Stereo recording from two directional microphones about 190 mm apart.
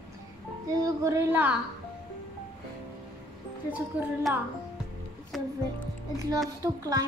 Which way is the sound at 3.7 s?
5° right (ahead or behind).